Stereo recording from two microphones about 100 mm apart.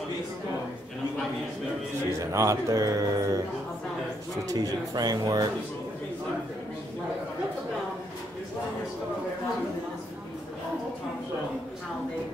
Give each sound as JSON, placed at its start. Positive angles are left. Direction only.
{"t": 2.1, "sound": "speech", "side_deg": -30}
{"t": 4.5, "sound": "speech", "side_deg": -40}